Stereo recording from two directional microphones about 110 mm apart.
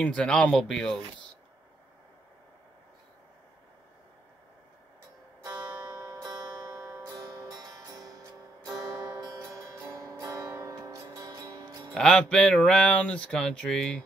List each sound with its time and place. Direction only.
0.0 s speech: 10° left (ahead or behind)
5.4 s music: 40° right (ahead or behind)
10.4 s music: 20° right (ahead or behind)
10.7 s music: 40° right (ahead or behind)
11.9 s speech: 5° left (ahead or behind)